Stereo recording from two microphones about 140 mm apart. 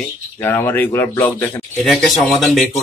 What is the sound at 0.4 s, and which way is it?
Speech, 15° left (ahead or behind).